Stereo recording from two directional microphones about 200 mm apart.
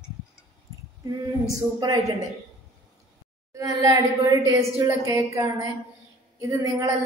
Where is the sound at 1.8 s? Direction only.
15° right (ahead or behind).